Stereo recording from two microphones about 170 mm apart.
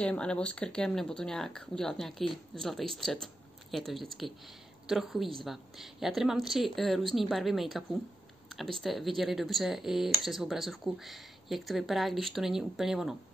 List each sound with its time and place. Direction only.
0.0 s speech: 5° left (ahead or behind)
8.5 s a sound: centre (ahead or behind)
8.8 s speech: centre (ahead or behind)